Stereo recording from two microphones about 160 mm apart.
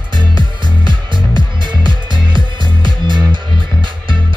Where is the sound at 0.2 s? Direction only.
30° right (ahead or behind).